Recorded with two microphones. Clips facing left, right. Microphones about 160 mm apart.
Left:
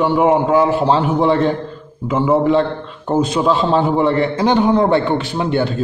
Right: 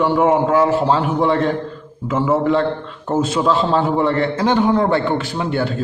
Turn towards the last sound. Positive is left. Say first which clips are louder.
# left 3 dB
turn(degrees=25)  # may be behind; listen again after turning